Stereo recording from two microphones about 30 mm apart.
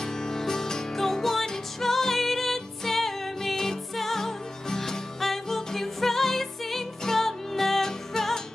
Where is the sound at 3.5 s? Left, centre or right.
Centre.